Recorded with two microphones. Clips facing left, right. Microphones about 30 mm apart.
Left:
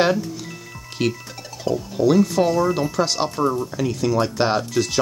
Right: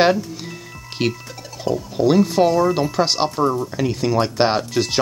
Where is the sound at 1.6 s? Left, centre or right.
Centre.